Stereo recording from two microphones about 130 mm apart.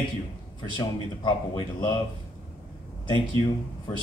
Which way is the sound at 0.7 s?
30° left (ahead or behind).